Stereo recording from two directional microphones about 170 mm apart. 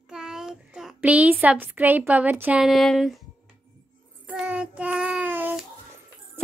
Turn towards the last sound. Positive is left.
turn(degrees=-10)  # may be behind; listen again after turning